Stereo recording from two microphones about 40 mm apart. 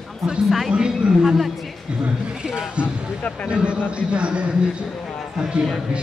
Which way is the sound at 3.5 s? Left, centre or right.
Right.